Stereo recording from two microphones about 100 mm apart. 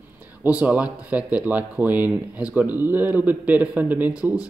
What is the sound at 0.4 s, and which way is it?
Speech, 15° right (ahead or behind).